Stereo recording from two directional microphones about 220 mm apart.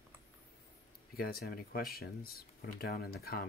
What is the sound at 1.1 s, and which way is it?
Speech, 45° left (ahead or behind).